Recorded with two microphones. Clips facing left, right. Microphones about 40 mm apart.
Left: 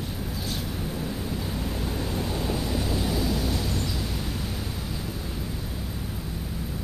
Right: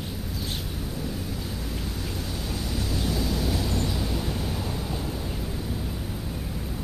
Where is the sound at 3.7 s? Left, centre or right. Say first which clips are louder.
Right 2 dB; centre.